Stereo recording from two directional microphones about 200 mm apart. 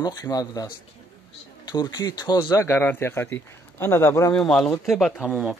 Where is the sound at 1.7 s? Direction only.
20° left (ahead or behind).